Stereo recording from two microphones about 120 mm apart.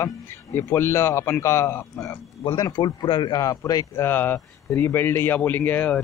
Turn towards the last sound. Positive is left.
turn(degrees=15)  # may be behind; listen again after turning